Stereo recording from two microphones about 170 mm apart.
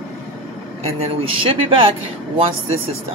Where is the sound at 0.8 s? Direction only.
35° right (ahead or behind).